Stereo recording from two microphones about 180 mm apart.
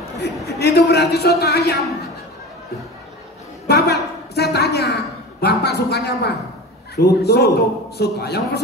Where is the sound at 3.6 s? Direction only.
65° left (ahead or behind).